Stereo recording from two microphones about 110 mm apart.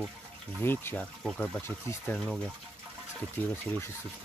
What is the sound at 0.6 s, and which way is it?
Speech, 20° left (ahead or behind).